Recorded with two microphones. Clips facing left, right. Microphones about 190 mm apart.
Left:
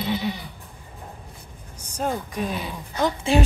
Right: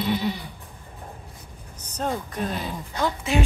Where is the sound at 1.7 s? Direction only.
10° left (ahead or behind).